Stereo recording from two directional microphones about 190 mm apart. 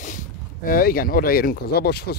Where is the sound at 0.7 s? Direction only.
50° left (ahead or behind).